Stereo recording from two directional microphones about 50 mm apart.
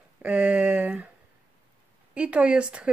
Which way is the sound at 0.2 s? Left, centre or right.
Right.